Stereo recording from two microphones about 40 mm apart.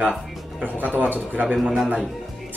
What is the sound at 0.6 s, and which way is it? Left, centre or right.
Speech, right.